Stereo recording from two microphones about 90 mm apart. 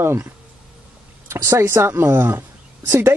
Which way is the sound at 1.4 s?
35° right (ahead or behind).